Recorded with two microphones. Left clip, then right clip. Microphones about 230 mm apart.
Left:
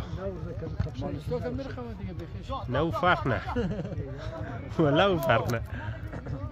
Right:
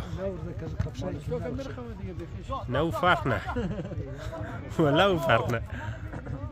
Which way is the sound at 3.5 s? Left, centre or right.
Left.